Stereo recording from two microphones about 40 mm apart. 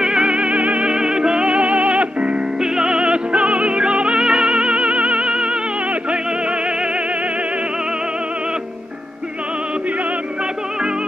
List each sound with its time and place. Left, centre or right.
0.0 s music: right
0.8 s music: right
2.6 s music: centre